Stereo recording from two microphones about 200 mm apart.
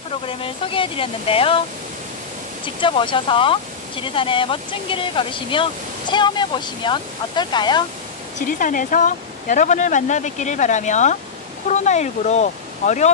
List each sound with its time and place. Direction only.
0.3 s speech: 25° left (ahead or behind)
2.6 s speech: 25° left (ahead or behind)
8.4 s speech: 40° left (ahead or behind)